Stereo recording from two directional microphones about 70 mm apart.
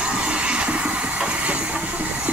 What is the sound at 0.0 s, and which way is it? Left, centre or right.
Train, centre.